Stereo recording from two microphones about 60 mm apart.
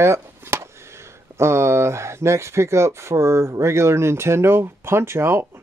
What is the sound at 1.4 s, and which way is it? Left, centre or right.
Speech, right.